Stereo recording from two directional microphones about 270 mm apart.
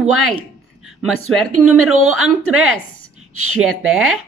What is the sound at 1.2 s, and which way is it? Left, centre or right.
Speech, right.